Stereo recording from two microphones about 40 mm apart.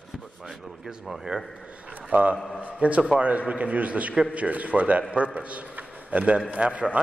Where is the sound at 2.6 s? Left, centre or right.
Right.